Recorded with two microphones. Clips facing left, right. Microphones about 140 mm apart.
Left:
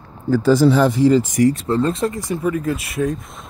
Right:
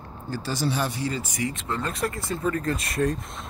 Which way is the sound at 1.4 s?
35° left (ahead or behind).